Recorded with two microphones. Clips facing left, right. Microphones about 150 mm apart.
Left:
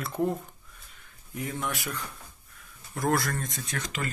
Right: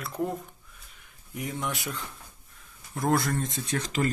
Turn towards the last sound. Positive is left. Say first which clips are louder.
# right 6 dB
turn(degrees=-35)  # may be behind; listen again after turning